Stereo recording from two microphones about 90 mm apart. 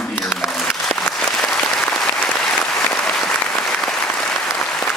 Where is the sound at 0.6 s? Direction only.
5° left (ahead or behind).